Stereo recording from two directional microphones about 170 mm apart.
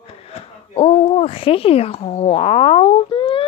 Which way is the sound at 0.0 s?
35° left (ahead or behind).